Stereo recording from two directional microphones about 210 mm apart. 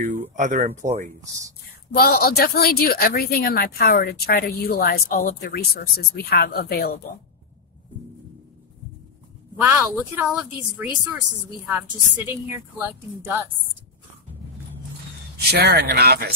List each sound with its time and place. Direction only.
0.0 s speech: 35° right (ahead or behind)
2.0 s a woman's voice: 45° left (ahead or behind)
9.6 s a woman's voice: 10° right (ahead or behind)
12.3 s a woman's voice: 10° right (ahead or behind)
15.3 s speech: 50° right (ahead or behind)